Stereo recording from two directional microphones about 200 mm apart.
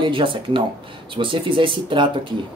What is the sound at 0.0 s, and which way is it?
Speech, 25° right (ahead or behind).